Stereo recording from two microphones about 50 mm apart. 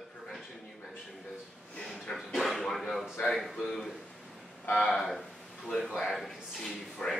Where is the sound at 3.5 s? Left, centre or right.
Centre.